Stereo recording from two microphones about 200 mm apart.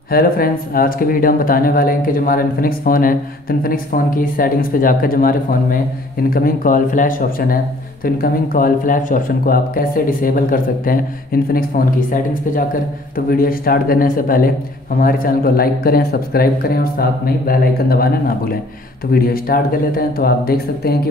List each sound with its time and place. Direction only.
0.1 s speech: 45° left (ahead or behind)